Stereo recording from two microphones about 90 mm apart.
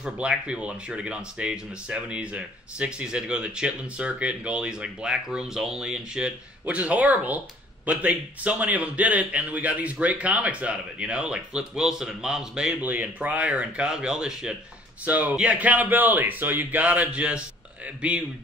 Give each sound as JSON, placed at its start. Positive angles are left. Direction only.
{"t": 0.0, "sound": "speech", "side_deg": -10}
{"t": 12.8, "sound": "speech", "side_deg": -20}